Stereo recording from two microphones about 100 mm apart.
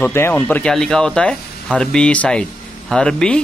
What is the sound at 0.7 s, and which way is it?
Speech, 5° left (ahead or behind).